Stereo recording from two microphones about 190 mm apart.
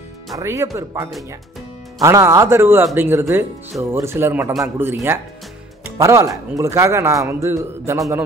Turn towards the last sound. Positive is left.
turn(degrees=-15)  # may be behind; listen again after turning